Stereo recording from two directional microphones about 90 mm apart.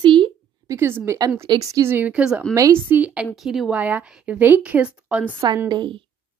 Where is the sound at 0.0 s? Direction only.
65° right (ahead or behind).